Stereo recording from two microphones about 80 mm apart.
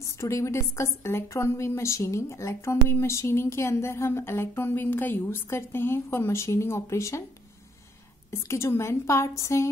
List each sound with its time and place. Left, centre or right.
0.0 s a woman's voice: left
8.3 s a woman's voice: left